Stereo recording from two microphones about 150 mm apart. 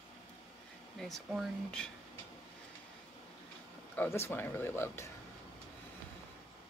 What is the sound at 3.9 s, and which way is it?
Speech, 15° left (ahead or behind).